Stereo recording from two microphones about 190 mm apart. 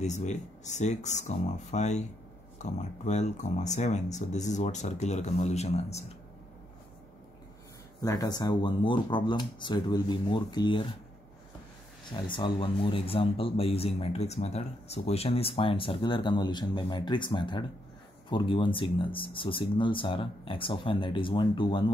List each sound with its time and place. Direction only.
0.0 s speech: 40° left (ahead or behind)
8.0 s speech: 20° left (ahead or behind)
12.1 s speech: 25° left (ahead or behind)